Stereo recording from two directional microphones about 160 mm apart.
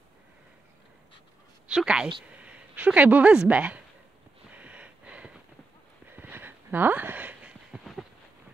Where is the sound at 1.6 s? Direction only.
5° right (ahead or behind).